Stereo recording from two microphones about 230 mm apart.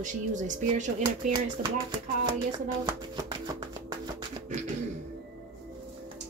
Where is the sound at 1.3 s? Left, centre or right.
Right.